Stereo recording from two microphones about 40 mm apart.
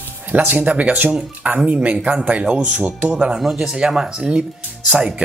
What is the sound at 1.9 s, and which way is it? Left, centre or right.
Speech, right.